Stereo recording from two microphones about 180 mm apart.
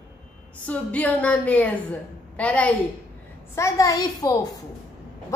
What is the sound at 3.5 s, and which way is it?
Speech, 15° left (ahead or behind).